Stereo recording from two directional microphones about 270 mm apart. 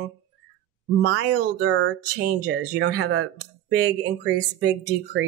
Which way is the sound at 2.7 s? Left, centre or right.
Right.